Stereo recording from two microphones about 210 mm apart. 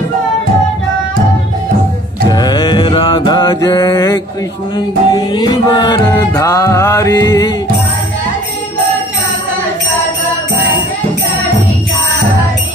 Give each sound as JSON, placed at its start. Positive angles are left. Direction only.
{"t": 2.2, "sound": "mantra", "side_deg": 20}
{"t": 4.7, "sound": "music", "side_deg": 20}